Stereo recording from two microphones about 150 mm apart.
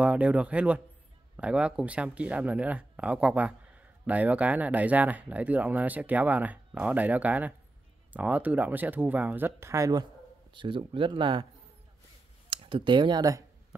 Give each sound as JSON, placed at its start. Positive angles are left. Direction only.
{"t": 0.0, "sound": "speech", "side_deg": -10}
{"t": 10.5, "sound": "speech", "side_deg": -35}
{"t": 12.4, "sound": "speech", "side_deg": -35}